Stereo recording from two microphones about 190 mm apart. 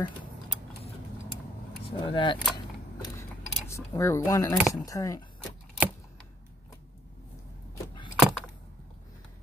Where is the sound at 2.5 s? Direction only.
20° left (ahead or behind).